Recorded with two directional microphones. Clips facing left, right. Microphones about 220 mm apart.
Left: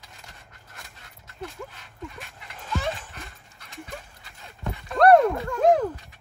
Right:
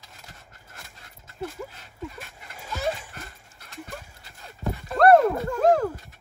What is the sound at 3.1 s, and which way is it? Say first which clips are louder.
Clip-clop: right 1 dB; centre (ahead or behind).